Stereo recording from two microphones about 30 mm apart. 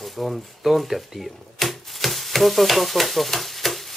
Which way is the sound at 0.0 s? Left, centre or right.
Centre.